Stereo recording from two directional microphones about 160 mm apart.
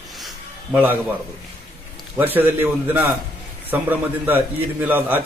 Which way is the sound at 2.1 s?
10° right (ahead or behind).